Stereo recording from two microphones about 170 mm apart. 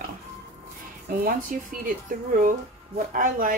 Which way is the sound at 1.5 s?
55° right (ahead or behind).